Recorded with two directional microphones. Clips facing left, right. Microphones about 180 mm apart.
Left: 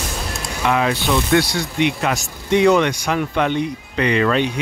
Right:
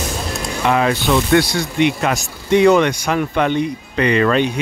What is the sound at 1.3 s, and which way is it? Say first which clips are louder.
Speech: right 2 dB; 45° right (ahead or behind).